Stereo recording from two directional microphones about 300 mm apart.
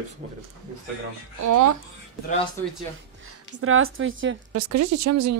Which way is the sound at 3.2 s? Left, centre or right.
Right.